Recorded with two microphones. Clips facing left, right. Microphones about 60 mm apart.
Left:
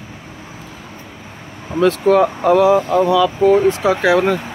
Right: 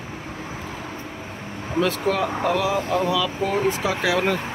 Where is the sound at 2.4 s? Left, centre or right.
Centre.